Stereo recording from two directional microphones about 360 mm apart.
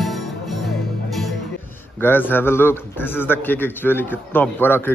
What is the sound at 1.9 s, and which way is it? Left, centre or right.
A man's voice, centre.